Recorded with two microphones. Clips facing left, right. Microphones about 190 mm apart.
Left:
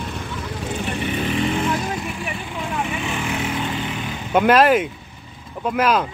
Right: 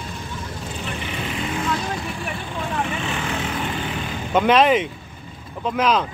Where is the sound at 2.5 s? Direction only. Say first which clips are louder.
Even; 10° left (ahead or behind).